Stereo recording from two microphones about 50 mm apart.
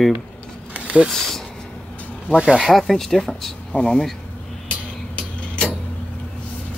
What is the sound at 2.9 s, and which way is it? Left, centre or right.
Speech, centre.